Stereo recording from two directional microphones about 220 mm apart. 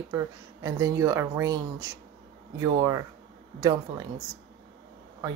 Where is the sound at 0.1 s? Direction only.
15° right (ahead or behind).